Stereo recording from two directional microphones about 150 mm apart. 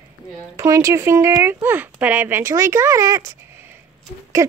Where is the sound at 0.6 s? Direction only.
20° right (ahead or behind).